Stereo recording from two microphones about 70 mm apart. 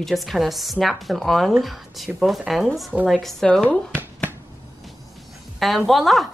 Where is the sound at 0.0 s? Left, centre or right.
Centre.